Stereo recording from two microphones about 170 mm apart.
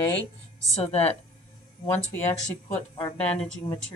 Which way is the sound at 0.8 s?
35° left (ahead or behind).